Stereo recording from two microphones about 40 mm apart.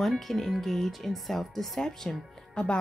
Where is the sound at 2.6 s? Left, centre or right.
Left.